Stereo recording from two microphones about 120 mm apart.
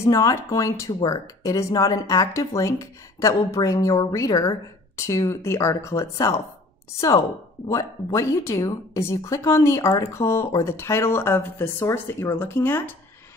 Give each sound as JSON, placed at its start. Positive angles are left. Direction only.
{"t": 0.0, "sound": "speech", "side_deg": 30}
{"t": 7.6, "sound": "speech", "side_deg": 25}